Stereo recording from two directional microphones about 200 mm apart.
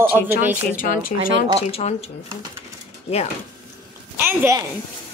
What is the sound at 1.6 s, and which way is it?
Speech, 30° left (ahead or behind).